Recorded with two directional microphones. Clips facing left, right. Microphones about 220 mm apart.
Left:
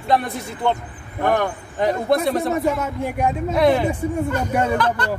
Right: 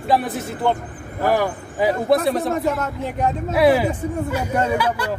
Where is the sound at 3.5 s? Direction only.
5° right (ahead or behind).